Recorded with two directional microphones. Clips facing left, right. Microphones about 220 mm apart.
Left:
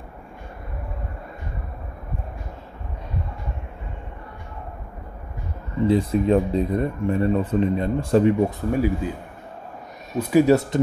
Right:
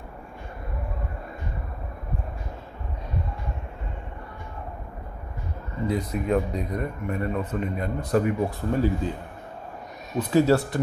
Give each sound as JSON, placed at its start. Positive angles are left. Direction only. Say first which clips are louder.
{"t": 5.9, "sound": "speech", "louder": "left 7 dB", "side_deg": 30}
{"t": 10.1, "sound": "speech", "louder": "left 3 dB", "side_deg": 10}